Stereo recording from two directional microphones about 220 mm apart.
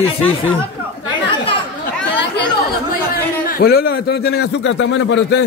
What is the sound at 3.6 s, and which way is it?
A man's voice, 45° left (ahead or behind).